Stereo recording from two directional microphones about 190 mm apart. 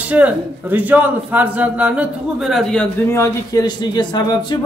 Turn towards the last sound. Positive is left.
turn(degrees=25)  # may be behind; listen again after turning